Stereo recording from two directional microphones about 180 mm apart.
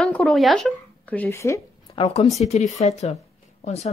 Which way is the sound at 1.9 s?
30° left (ahead or behind).